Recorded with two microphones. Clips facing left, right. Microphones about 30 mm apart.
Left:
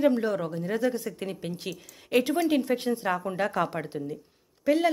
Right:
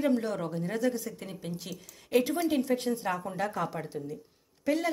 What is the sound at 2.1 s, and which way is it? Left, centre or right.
A woman's voice, left.